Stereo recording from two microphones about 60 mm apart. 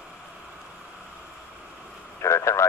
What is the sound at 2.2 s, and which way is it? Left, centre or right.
Vehicle, left.